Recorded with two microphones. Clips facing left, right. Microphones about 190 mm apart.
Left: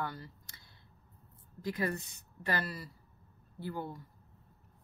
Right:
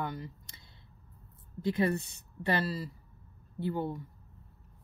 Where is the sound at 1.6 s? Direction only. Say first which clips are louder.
Right 6 dB; 25° right (ahead or behind).